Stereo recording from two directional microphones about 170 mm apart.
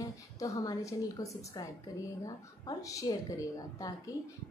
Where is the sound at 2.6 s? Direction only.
20° left (ahead or behind).